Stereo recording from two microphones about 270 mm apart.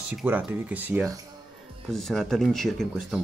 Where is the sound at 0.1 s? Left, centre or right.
Centre.